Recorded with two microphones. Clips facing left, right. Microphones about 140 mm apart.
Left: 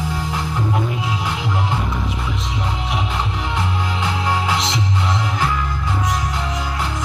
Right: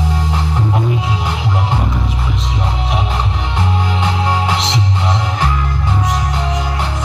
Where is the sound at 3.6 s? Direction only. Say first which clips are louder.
Right 6 dB; 30° right (ahead or behind).